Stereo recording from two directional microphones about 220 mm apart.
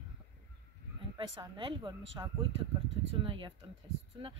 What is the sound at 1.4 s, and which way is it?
Speech, 20° right (ahead or behind).